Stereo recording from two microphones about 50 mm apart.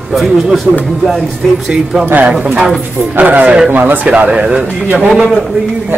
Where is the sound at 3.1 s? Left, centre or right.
Right.